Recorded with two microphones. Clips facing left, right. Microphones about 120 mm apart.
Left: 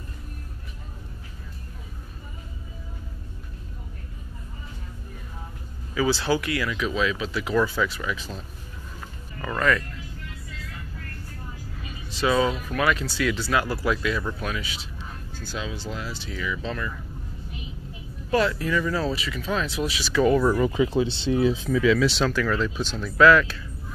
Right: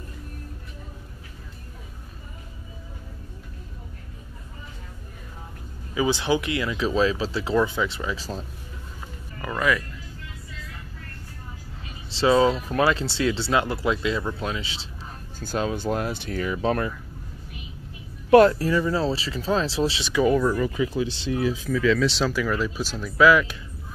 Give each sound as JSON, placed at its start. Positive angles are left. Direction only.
{"t": 5.9, "sound": "speech", "side_deg": -20}
{"t": 9.4, "sound": "speech", "side_deg": -5}
{"t": 12.1, "sound": "speech", "side_deg": -30}
{"t": 15.3, "sound": "speech", "side_deg": -45}
{"t": 18.5, "sound": "speech", "side_deg": -35}
{"t": 20.5, "sound": "speech", "side_deg": 25}